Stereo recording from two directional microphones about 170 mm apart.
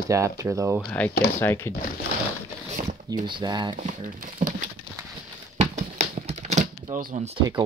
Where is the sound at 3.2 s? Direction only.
25° right (ahead or behind).